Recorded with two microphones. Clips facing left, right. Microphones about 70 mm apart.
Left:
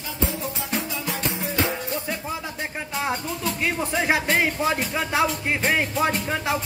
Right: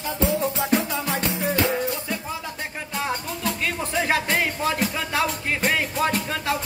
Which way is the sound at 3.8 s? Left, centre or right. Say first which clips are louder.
Even; centre.